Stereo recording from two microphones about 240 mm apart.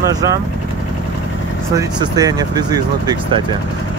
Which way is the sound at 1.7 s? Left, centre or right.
Centre.